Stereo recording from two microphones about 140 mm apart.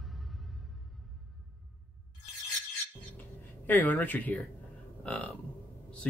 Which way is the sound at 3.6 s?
15° left (ahead or behind).